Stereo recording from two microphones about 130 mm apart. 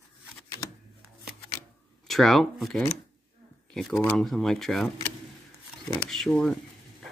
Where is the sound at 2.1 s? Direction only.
Centre (ahead or behind).